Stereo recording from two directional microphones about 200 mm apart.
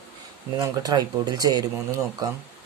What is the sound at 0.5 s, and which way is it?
Speech, 20° right (ahead or behind).